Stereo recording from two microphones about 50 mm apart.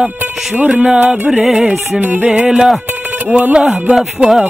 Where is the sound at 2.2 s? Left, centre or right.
Centre.